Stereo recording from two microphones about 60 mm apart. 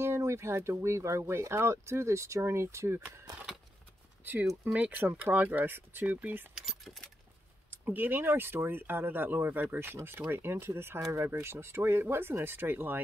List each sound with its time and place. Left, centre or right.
0.0 s speech: right
4.2 s speech: right
6.5 s keys jangling: centre
7.7 s speech: right